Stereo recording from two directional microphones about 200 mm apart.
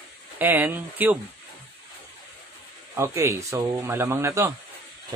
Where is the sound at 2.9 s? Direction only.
15° right (ahead or behind).